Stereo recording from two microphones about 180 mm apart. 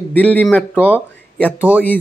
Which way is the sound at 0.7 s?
10° right (ahead or behind).